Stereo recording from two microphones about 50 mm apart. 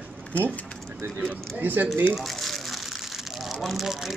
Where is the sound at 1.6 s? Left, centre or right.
Right.